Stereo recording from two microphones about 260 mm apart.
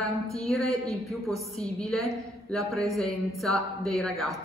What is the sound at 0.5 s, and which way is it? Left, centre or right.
A woman's voice, centre.